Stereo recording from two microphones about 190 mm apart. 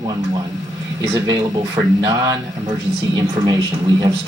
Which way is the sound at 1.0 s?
20° right (ahead or behind).